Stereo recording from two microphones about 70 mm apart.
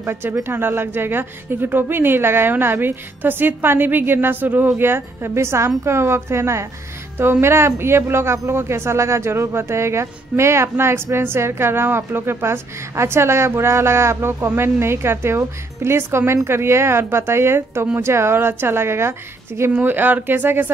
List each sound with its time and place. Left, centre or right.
0.0 s a woman's voice: right